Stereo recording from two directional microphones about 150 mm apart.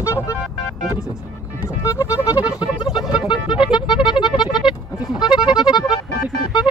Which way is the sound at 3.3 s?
30° left (ahead or behind).